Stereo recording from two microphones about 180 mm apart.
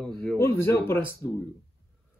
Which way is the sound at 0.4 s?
15° left (ahead or behind).